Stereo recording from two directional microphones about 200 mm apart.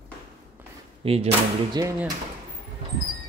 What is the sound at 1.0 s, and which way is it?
Speech, 30° right (ahead or behind).